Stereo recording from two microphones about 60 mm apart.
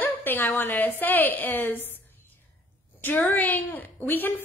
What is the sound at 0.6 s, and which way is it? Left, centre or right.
A woman's voice, left.